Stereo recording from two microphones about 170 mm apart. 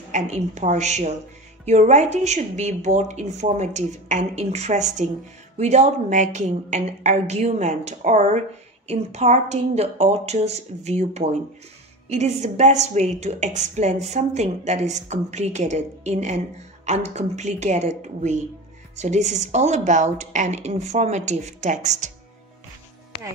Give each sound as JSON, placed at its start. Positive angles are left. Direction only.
{"t": 0.1, "sound": "a woman's voice", "side_deg": -45}